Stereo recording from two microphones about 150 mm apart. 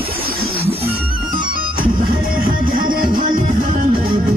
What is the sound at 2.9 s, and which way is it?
Music, 70° right (ahead or behind).